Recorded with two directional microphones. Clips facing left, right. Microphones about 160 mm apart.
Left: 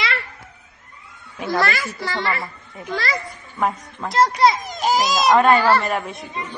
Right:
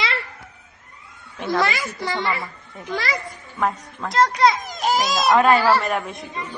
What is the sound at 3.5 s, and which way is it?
A child's voice, 5° left (ahead or behind).